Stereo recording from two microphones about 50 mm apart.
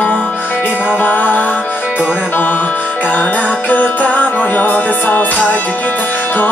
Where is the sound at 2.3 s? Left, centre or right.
Left.